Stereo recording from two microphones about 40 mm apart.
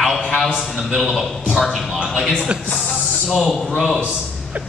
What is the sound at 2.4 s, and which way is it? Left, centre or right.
Speech, right.